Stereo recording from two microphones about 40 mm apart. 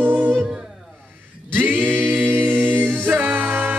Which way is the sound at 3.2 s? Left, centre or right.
Right.